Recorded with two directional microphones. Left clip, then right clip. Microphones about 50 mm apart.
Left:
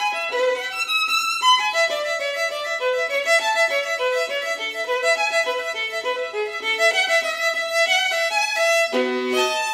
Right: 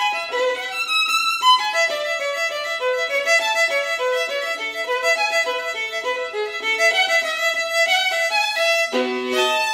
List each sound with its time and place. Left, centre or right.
0.0 s violin: right
2.9 s music: right
6.8 s music: right
7.7 s violin: right